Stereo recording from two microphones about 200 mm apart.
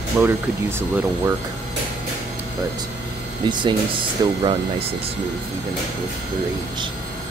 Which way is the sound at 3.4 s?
20° right (ahead or behind).